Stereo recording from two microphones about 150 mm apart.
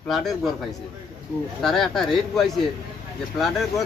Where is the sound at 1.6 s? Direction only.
Centre (ahead or behind).